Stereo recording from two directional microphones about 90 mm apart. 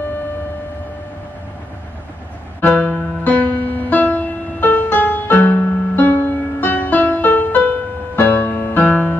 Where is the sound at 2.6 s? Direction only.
15° left (ahead or behind).